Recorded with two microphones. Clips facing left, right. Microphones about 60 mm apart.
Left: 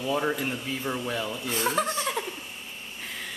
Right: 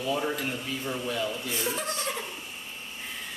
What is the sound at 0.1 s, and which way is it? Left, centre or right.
Speech, centre.